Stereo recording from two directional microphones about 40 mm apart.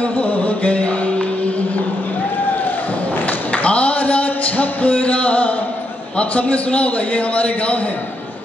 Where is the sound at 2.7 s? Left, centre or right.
Left.